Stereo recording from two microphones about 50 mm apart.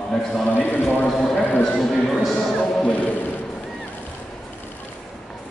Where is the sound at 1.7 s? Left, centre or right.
Centre.